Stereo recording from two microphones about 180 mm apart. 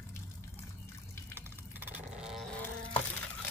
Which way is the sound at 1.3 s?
10° right (ahead or behind).